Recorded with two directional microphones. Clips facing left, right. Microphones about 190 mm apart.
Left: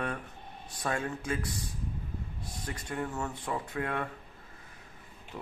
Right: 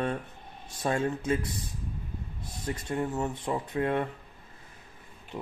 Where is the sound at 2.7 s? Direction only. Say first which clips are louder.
Right 5 dB; 25° right (ahead or behind).